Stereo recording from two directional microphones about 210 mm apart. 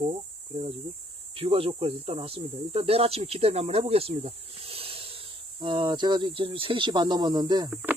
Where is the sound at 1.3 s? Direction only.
25° right (ahead or behind).